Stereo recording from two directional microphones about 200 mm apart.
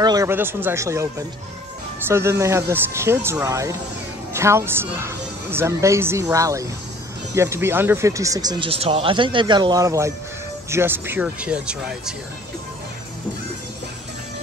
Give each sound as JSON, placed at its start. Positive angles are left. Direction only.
{"t": 0.0, "sound": "speech", "side_deg": -15}
{"t": 2.0, "sound": "speech", "side_deg": -15}